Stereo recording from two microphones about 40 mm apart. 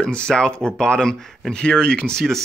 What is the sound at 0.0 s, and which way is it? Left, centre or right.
Speech, left.